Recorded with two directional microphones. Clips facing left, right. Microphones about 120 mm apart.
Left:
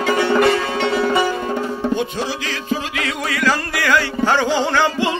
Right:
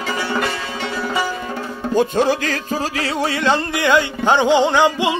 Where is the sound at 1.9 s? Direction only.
40° right (ahead or behind).